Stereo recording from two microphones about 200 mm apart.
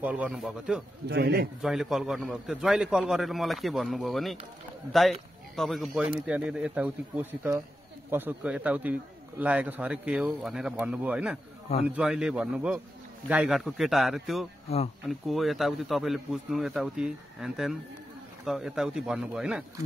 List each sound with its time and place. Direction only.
0.0 s a man's voice: 5° right (ahead or behind)
1.0 s a man's voice: 55° right (ahead or behind)
1.6 s a man's voice: centre (ahead or behind)